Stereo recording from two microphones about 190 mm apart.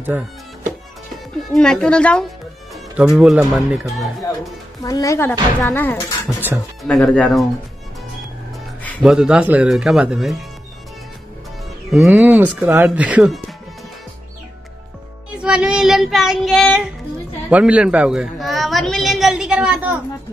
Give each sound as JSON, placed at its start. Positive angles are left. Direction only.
{"t": 0.1, "sound": "speech", "side_deg": -10}
{"t": 1.5, "sound": "a woman's voice", "side_deg": 5}
{"t": 4.8, "sound": "a woman's voice", "side_deg": 15}
{"t": 9.0, "sound": "a woman's voice", "side_deg": -5}
{"t": 11.9, "sound": "speech", "side_deg": -5}
{"t": 15.3, "sound": "a woman's voice", "side_deg": -5}